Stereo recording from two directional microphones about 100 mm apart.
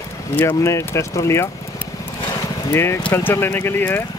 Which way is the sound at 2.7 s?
25° left (ahead or behind).